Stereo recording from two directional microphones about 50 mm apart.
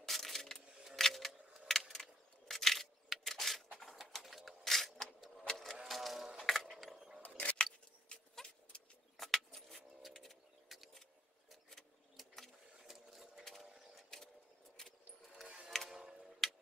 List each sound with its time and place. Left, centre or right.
0.0 s a sound: centre
0.9 s camera: centre
1.9 s a sound: centre
5.5 s vehicle: centre
5.9 s music: centre
6.8 s roaring cats: centre
7.2 s a sound: left
7.5 s scissors: centre
8.4 s vehicle: centre
9.1 s vehicle: centre
11.7 s a sound: centre
14.8 s keys jangling: centre
15.4 s music: right
16.4 s music: centre